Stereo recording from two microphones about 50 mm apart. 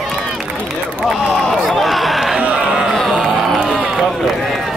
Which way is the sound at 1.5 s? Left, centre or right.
Centre.